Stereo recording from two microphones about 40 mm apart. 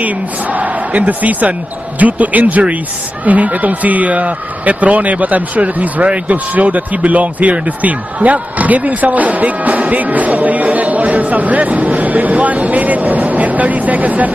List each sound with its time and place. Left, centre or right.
0.0 s speech: right